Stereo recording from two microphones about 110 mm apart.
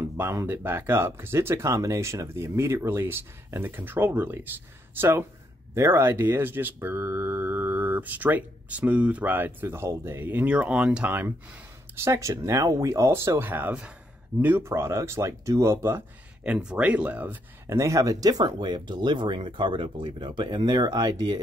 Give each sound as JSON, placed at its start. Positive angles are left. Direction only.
{"t": 0.0, "sound": "speech", "side_deg": -25}
{"t": 5.8, "sound": "speech", "side_deg": -25}
{"t": 16.4, "sound": "speech", "side_deg": -10}
{"t": 17.7, "sound": "speech", "side_deg": -30}